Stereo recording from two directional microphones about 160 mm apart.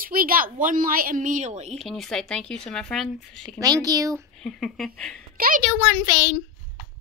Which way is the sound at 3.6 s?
25° right (ahead or behind).